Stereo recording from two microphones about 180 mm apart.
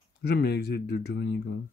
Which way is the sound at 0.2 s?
65° left (ahead or behind).